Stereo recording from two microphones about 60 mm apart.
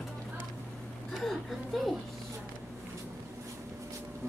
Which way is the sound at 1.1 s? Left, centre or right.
Centre.